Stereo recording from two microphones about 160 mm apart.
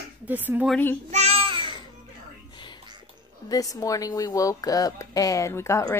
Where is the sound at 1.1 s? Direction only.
40° right (ahead or behind).